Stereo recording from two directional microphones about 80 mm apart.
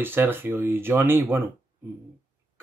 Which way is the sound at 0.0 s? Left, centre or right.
Right.